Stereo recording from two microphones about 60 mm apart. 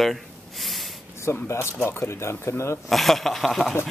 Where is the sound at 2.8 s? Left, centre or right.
Centre.